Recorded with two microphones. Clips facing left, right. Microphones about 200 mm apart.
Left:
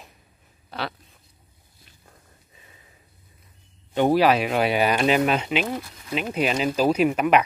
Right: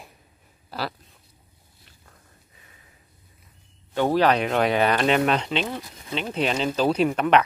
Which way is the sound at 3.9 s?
15° left (ahead or behind).